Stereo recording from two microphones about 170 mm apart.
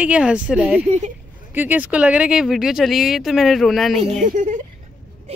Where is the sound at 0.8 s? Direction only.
45° right (ahead or behind).